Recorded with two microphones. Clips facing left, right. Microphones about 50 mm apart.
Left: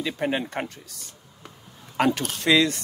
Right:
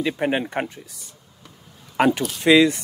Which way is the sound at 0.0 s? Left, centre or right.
Centre.